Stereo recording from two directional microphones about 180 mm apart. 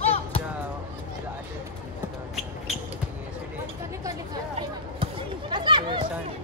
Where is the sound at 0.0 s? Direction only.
35° left (ahead or behind).